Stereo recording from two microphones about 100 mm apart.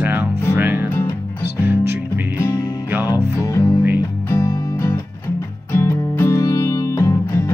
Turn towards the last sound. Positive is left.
turn(degrees=30)  # may be behind; listen again after turning